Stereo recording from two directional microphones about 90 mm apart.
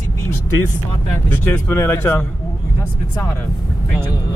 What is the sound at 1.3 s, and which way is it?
Speech, 25° left (ahead or behind).